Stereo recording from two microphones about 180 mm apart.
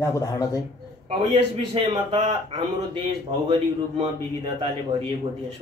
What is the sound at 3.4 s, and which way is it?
Speech, 25° right (ahead or behind).